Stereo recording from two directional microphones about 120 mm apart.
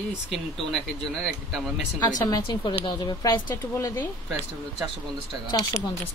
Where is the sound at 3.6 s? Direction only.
20° left (ahead or behind).